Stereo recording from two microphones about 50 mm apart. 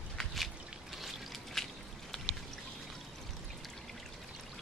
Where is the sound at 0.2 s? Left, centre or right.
Centre.